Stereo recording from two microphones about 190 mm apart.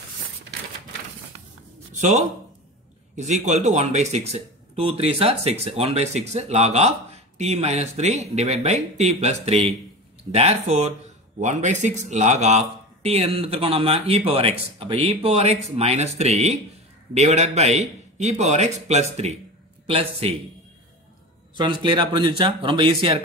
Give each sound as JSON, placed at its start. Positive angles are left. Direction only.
{"t": 2.0, "sound": "speech", "side_deg": -40}
{"t": 21.5, "sound": "speech", "side_deg": -25}